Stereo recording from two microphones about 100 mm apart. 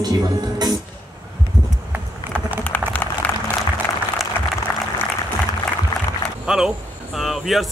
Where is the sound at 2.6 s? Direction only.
15° left (ahead or behind).